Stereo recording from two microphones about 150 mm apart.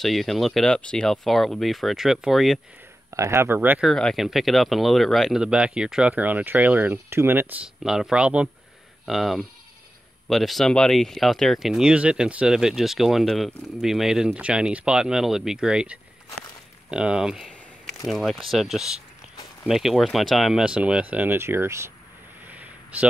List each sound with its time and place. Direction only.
0.0 s speech: centre (ahead or behind)
3.1 s speech: 20° right (ahead or behind)
3.8 s speech: 5° left (ahead or behind); by 21.9 s 15° right (ahead or behind)
22.5 s a sound: 10° right (ahead or behind)